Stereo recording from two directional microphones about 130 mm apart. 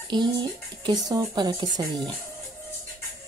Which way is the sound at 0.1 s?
35° right (ahead or behind).